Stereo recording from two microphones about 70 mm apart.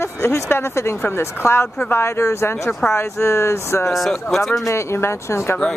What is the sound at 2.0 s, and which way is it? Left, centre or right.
Speech, left.